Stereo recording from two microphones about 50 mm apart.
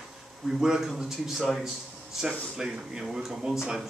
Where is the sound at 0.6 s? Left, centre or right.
Centre.